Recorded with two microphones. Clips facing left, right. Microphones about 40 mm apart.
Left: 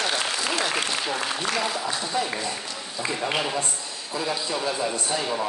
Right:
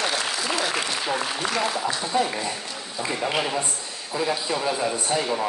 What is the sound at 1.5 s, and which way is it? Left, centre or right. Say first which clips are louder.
A man's voice: right 2 dB; centre.